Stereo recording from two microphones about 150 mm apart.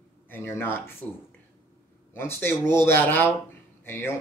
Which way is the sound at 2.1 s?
15° left (ahead or behind).